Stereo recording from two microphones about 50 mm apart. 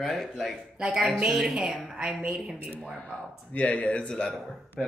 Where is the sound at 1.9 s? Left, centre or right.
Centre.